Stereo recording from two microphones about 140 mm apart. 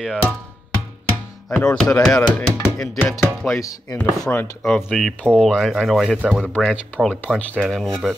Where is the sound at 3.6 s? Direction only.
25° left (ahead or behind).